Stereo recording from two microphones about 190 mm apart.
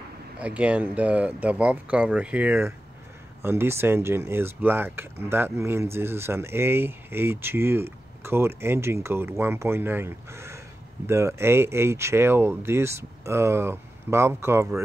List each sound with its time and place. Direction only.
0.4 s speech: 5° right (ahead or behind)